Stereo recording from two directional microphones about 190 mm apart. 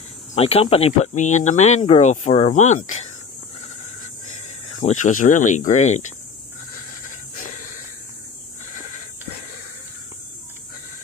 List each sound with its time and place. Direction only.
0.3 s speech: 30° left (ahead or behind)
4.6 s speech: 35° left (ahead or behind)